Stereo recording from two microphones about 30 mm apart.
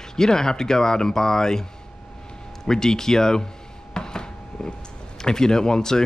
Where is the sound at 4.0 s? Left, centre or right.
Left.